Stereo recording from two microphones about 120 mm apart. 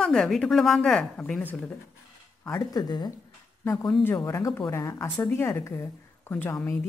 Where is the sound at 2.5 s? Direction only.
35° left (ahead or behind).